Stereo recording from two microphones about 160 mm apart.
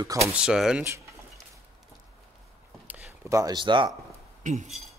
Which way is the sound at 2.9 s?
15° right (ahead or behind).